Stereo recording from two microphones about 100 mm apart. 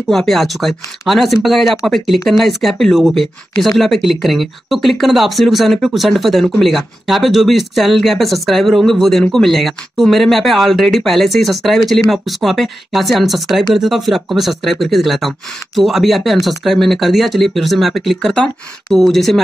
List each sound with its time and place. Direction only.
0.1 s speech: 5° left (ahead or behind)